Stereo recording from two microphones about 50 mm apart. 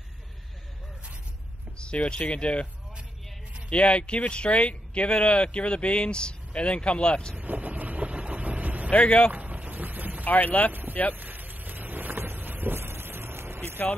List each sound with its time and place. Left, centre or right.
1.8 s speech: left
3.7 s speech: left
7.3 s vehicle: right
8.9 s speech: left
9.3 s a sound: right
10.2 s speech: left
10.7 s speech: right
11.1 s vehicle: right